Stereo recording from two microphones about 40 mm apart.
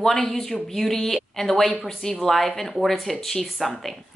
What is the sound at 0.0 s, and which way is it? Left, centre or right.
Speech, centre.